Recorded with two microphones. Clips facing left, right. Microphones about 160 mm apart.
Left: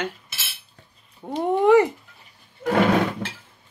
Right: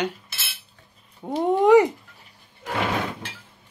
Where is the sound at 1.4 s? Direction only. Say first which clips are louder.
Right 1 dB; 20° right (ahead or behind).